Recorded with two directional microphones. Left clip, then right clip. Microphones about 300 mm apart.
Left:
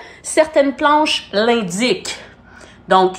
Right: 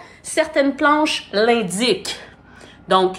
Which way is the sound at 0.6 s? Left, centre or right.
Centre.